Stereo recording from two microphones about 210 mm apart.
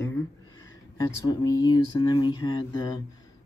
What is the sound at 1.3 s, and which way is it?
Speech, 20° left (ahead or behind).